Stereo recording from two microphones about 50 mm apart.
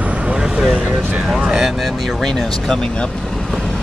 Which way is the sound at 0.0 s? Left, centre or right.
Right.